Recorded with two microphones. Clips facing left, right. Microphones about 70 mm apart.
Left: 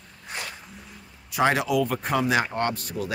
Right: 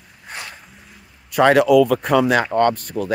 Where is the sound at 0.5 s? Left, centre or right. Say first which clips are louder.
Even; centre.